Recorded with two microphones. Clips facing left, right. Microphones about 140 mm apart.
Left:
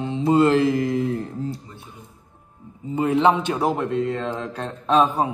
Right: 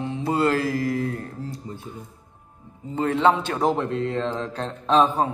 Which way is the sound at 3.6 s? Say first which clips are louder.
Right 1 dB; centre (ahead or behind).